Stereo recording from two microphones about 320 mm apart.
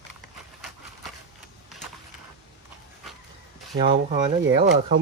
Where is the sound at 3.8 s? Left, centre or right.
Centre.